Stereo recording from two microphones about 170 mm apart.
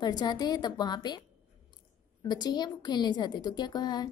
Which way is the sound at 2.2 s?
25° left (ahead or behind).